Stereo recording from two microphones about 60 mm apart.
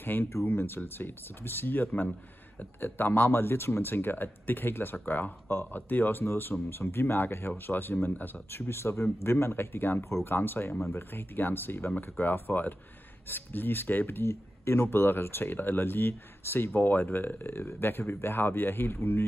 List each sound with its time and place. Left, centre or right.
0.0 s speech: left
2.8 s speech: left